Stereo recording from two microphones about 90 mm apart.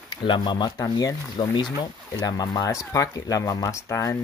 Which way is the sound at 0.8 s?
45° left (ahead or behind).